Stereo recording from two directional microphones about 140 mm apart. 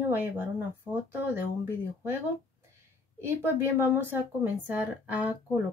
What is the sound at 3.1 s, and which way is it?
Speech, 15° right (ahead or behind).